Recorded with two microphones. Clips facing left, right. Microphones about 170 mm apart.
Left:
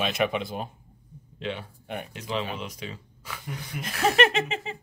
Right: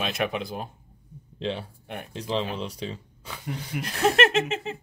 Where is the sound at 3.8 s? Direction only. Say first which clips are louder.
Right 1 dB; centre (ahead or behind).